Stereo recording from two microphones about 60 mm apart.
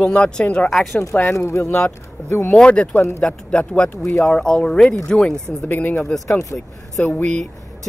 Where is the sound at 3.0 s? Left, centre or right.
Left.